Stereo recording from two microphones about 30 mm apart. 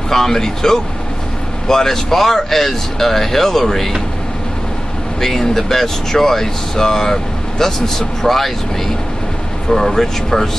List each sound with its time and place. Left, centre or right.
0.1 s speech: centre
5.2 s speech: centre